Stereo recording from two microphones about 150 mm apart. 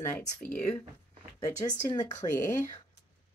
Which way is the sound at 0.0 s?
15° left (ahead or behind).